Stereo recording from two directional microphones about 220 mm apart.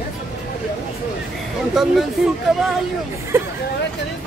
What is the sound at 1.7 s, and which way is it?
Speech, centre (ahead or behind).